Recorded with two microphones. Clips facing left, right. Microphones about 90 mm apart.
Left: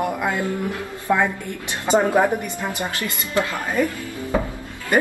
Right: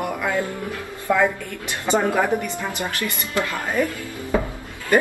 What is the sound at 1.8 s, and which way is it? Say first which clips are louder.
Speech: left 2 dB; 20° left (ahead or behind).